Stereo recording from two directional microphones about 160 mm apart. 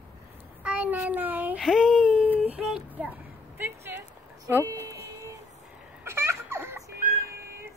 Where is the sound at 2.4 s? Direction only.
5° right (ahead or behind).